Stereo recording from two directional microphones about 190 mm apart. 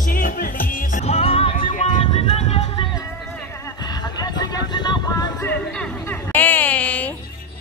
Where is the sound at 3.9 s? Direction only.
20° left (ahead or behind).